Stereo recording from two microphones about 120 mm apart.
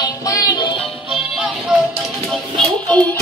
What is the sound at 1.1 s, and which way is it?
Music, 5° right (ahead or behind).